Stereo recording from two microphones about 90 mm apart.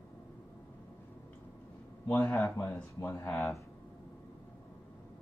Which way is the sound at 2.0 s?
20° left (ahead or behind).